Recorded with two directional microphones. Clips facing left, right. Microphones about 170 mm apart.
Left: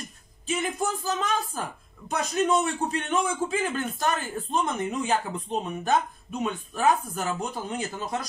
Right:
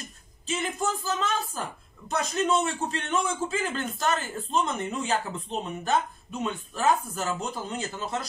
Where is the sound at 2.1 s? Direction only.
15° left (ahead or behind).